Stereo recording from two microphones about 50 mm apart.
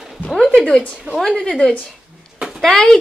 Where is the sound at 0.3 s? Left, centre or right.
Centre.